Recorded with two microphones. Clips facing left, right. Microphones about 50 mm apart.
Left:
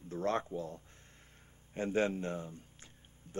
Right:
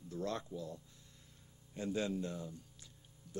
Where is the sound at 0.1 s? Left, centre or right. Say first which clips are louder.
Left 6 dB; left.